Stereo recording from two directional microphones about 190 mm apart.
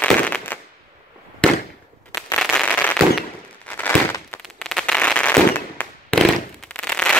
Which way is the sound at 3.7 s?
10° left (ahead or behind).